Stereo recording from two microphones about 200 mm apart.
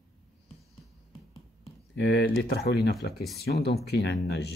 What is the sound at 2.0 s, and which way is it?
Speech, 55° left (ahead or behind).